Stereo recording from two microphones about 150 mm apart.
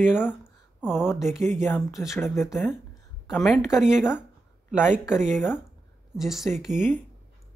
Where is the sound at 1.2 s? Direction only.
5° right (ahead or behind).